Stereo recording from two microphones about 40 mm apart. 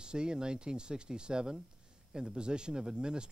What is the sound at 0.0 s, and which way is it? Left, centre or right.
Speech, right.